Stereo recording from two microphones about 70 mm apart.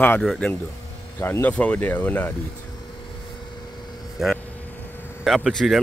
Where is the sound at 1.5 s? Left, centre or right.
Left.